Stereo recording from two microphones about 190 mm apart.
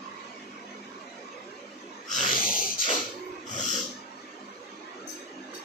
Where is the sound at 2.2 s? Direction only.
45° left (ahead or behind).